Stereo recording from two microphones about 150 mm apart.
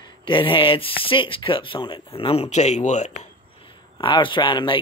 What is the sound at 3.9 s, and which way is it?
Speech, 35° left (ahead or behind).